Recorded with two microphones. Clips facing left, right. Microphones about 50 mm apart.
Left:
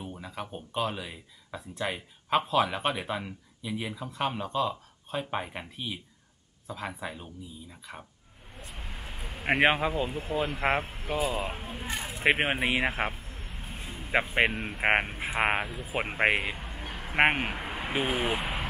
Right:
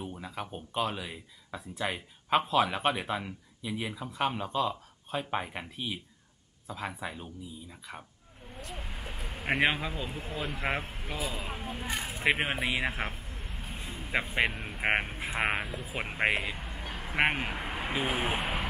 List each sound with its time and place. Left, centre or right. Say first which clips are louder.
0.0 s a sound: even; centre
0.6 s speech: left 1 dB; centre
8.5 s vehicle: right 1 dB; centre
9.7 s speech: left 6 dB; centre
12.2 s speech: left 3 dB; centre
13.1 s vehicle: even; centre
14.4 s speech: left 3 dB; centre
14.8 s speech: left 3 dB; centre
15.4 s speech: left 3 dB; centre
16.0 s speech: left 3 dB; centre
16.5 s a sound: even; centre
17.2 s speech: left 4 dB; left
17.5 s speech: left 1 dB; centre